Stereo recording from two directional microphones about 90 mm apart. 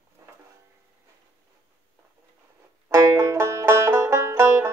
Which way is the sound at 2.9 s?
35° right (ahead or behind).